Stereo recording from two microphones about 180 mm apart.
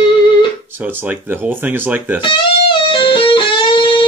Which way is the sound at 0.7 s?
10° right (ahead or behind).